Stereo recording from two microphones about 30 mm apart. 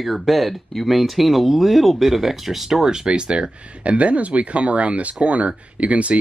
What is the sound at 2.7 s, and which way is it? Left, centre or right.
Speech, right.